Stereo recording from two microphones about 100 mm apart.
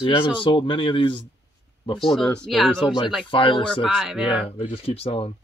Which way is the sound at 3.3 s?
55° left (ahead or behind).